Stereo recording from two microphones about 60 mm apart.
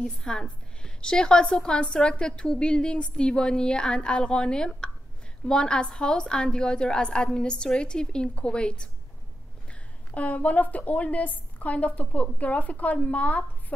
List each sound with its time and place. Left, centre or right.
0.0 s a woman's voice: centre